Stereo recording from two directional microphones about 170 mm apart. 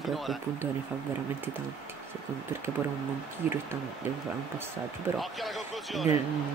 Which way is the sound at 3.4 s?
10° right (ahead or behind).